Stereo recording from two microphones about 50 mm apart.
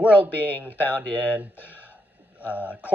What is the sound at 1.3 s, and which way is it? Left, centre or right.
Speech, right.